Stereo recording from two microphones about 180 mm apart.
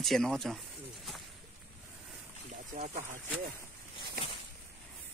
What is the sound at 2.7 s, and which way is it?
Speech, 45° right (ahead or behind).